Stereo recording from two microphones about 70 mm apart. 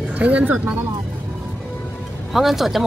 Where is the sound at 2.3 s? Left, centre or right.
Centre.